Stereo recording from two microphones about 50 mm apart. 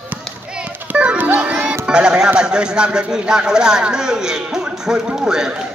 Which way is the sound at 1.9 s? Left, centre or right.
Centre.